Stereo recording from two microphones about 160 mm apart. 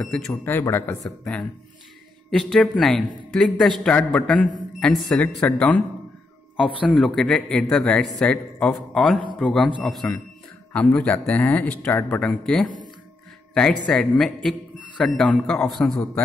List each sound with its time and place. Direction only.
0.4 s a man's voice: 15° left (ahead or behind)
13.8 s a man's voice: 5° left (ahead or behind)